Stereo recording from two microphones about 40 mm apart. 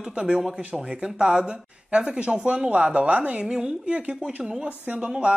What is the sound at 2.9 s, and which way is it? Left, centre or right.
Speech, right.